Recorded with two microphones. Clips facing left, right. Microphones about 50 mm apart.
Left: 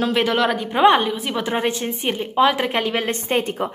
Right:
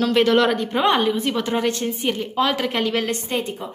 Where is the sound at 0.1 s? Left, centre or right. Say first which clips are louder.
Right 2 dB; centre.